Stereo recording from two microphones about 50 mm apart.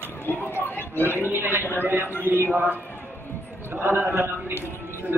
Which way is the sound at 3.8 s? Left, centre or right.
Right.